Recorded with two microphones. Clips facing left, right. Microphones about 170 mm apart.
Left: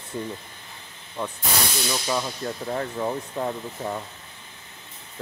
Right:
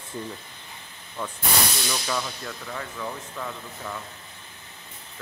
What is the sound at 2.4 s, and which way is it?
Speech, 35° left (ahead or behind).